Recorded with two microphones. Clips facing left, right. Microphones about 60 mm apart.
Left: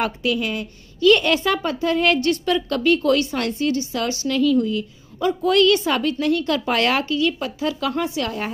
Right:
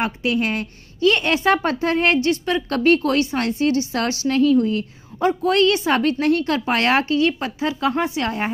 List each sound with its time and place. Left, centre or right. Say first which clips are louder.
0.0 s a woman's voice: even; right
0.4 s a woman's voice: right 3 dB; right
1.0 s a woman's voice: left 1 dB; right
2.8 s a woman's voice: right 2 dB; right
3.3 s a woman's voice: right 2 dB; right
3.7 s a woman's voice: right 2 dB; right
4.3 s a woman's voice: right 2 dB; right